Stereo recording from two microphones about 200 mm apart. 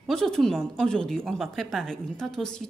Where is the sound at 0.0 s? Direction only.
Centre (ahead or behind).